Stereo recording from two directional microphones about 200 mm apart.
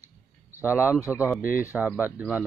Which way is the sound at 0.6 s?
10° right (ahead or behind).